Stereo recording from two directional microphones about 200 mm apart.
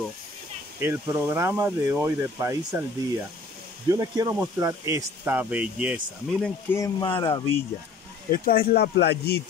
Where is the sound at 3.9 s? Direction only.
15° right (ahead or behind).